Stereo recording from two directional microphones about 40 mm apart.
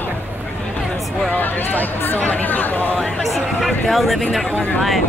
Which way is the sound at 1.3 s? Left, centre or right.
Left.